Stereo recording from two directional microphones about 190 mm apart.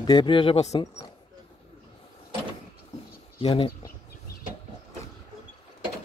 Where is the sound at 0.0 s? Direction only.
25° left (ahead or behind).